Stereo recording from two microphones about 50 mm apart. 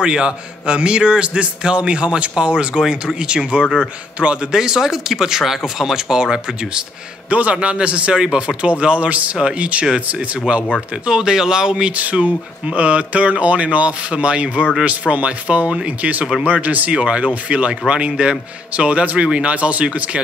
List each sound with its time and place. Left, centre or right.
0.0 s a man's voice: centre
7.2 s a man's voice: right
11.1 s speech: centre
11.9 s a man's voice: right